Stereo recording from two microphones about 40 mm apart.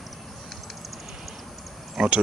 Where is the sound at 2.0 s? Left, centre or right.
Centre.